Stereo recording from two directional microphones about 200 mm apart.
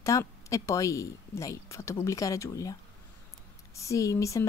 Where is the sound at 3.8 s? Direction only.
15° left (ahead or behind).